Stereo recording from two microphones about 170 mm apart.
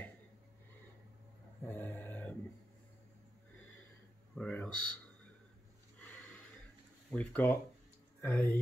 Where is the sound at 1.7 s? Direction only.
10° left (ahead or behind).